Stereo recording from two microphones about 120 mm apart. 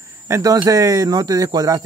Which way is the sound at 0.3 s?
30° right (ahead or behind).